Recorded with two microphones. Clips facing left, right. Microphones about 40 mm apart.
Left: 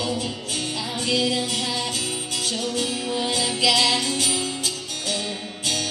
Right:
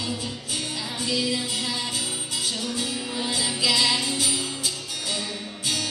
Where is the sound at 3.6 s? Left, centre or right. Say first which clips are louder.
Left 3 dB; left.